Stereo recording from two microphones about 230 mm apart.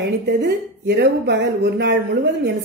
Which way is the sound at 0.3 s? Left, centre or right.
Right.